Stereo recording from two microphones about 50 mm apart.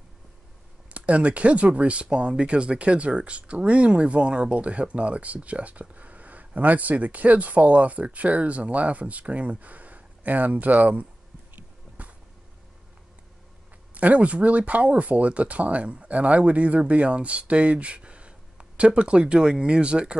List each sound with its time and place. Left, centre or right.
0.8 s speech: right
13.9 s speech: right